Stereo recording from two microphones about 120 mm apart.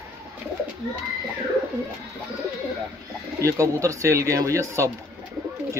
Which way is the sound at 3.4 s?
25° right (ahead or behind).